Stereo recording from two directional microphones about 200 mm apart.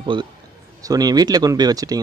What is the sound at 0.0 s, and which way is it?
A man's voice, 25° right (ahead or behind).